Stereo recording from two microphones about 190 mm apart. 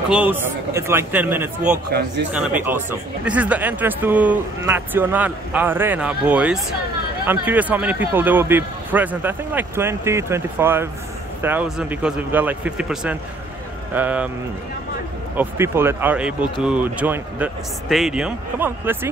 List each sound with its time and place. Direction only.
0.1 s speech: 10° right (ahead or behind)
1.9 s speech: 60° right (ahead or behind)
2.3 s speech: 10° right (ahead or behind)
15.3 s speech: 15° right (ahead or behind)